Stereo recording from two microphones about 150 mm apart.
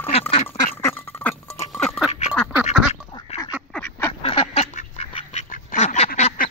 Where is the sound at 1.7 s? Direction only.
5° left (ahead or behind).